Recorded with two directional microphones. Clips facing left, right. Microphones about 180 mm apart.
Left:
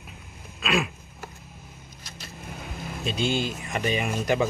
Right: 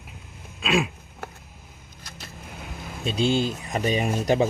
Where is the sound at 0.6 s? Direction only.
25° right (ahead or behind).